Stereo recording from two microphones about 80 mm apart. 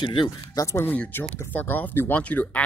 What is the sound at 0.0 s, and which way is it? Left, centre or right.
Speech, left.